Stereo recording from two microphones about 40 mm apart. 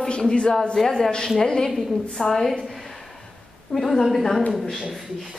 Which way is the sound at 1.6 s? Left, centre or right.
Centre.